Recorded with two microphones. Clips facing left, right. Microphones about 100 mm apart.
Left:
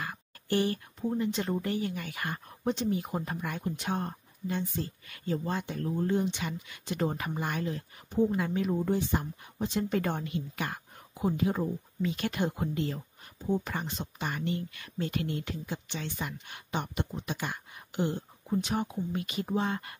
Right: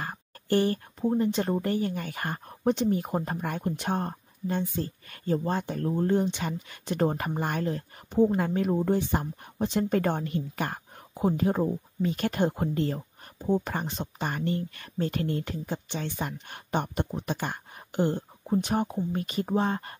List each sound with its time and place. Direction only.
0.0 s speech: 40° right (ahead or behind)